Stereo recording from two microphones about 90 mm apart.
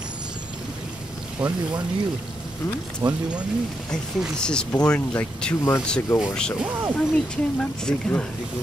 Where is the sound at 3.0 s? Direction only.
50° right (ahead or behind).